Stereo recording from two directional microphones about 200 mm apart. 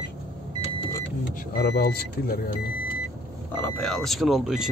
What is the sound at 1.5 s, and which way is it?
Speech, 50° left (ahead or behind).